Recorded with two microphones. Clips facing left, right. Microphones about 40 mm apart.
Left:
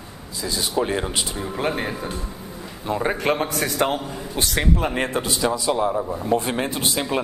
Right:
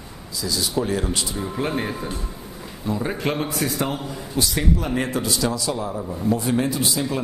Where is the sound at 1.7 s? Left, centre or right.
Centre.